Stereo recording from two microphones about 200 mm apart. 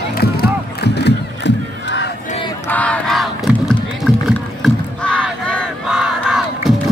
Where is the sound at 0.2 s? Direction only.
50° left (ahead or behind).